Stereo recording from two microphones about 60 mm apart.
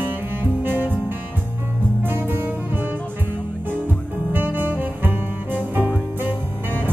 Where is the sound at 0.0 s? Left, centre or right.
Right.